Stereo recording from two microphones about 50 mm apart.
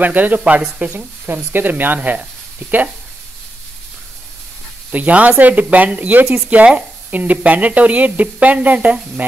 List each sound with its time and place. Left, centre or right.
0.0 s speech: right
0.9 s speech: right
2.0 s speech: right
4.9 s speech: right